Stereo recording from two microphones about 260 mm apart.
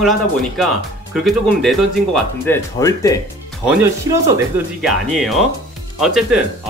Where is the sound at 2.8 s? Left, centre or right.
Centre.